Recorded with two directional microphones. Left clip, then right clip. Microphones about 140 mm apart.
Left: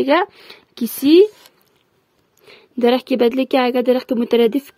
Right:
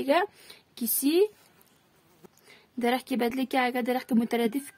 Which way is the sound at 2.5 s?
30° left (ahead or behind).